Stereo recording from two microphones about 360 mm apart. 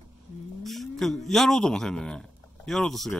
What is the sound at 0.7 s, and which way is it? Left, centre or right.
A man's voice, centre.